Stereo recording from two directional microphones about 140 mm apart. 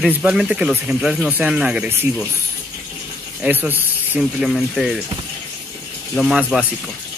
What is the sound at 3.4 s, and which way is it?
Speech, 15° right (ahead or behind).